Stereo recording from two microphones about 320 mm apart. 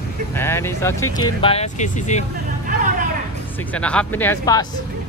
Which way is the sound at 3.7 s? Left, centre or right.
Centre.